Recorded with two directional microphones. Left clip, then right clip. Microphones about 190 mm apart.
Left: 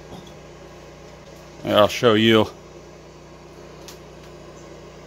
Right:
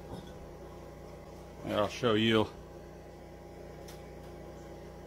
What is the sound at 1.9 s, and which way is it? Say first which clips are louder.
Speech: left 12 dB; 35° left (ahead or behind).